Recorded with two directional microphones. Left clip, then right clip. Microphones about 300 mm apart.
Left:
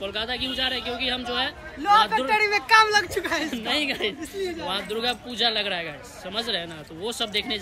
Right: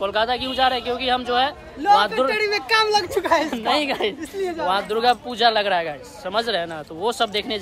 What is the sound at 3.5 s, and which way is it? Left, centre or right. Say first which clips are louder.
Speech: right 5 dB; centre.